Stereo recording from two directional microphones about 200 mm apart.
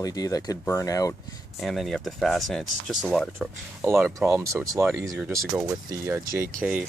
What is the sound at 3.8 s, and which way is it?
Speech, 10° right (ahead or behind).